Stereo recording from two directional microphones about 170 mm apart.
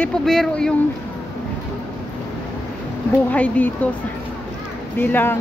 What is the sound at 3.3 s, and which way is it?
Speech, 10° left (ahead or behind).